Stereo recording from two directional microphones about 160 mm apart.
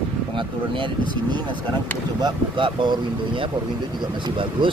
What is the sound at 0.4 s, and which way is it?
Speech, 30° right (ahead or behind).